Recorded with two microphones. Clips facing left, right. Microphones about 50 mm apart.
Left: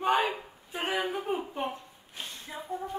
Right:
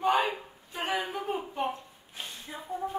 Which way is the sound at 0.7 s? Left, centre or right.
Centre.